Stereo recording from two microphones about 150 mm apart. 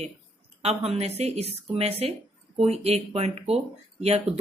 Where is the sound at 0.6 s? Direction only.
40° right (ahead or behind).